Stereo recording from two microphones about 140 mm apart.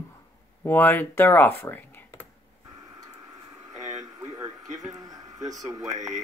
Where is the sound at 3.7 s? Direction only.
25° right (ahead or behind).